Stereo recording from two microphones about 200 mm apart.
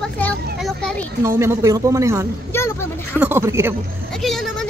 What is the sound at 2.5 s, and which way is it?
Speech, 10° left (ahead or behind).